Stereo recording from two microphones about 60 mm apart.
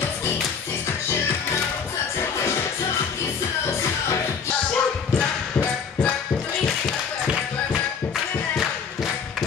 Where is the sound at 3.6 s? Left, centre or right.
Left.